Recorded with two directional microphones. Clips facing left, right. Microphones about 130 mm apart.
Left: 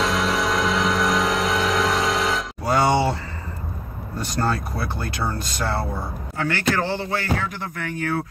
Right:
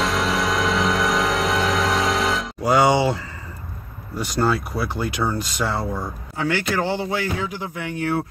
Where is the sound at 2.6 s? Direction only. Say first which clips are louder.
Right 2 dB; 15° right (ahead or behind).